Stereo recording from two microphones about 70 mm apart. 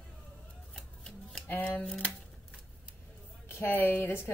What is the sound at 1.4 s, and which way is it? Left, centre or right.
Speech, left.